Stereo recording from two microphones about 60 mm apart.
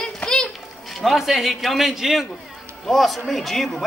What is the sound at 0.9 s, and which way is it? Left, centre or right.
A man's voice, centre.